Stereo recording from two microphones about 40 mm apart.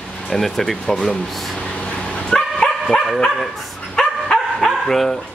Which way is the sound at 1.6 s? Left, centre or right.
Left.